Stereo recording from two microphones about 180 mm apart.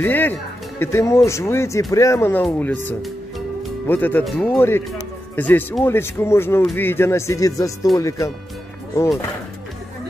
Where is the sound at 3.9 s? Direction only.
10° left (ahead or behind).